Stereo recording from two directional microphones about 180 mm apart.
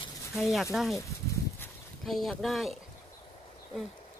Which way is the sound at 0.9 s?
15° left (ahead or behind).